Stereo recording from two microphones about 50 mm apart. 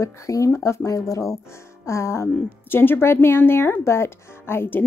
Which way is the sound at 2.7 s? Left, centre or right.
Left.